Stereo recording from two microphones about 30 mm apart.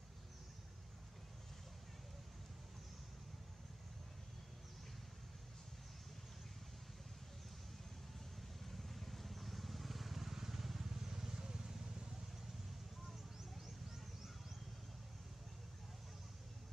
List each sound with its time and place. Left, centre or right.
8.4 s vehicle: centre